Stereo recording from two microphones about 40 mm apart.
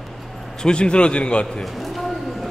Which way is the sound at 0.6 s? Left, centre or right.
Left.